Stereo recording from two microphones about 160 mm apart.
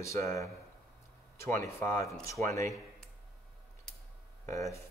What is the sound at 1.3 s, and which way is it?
Speech, 15° left (ahead or behind).